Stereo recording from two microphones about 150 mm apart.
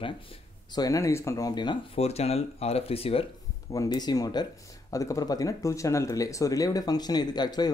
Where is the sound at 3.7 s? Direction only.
25° left (ahead or behind).